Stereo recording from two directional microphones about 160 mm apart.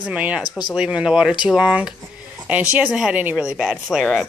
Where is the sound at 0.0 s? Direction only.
10° right (ahead or behind).